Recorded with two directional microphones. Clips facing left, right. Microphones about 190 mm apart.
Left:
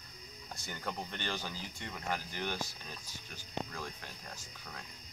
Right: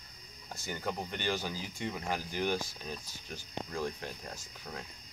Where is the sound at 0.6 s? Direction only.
10° right (ahead or behind).